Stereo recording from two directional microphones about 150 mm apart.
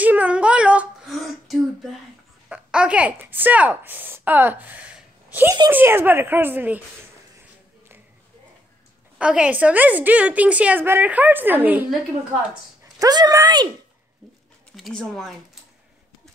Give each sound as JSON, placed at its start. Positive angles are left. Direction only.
{"t": 0.0, "sound": "a sound", "side_deg": -10}
{"t": 2.5, "sound": "a woman's voice", "side_deg": -5}
{"t": 9.2, "sound": "a woman's voice", "side_deg": -5}
{"t": 12.8, "sound": "speech", "side_deg": -25}
{"t": 14.8, "sound": "speech", "side_deg": 0}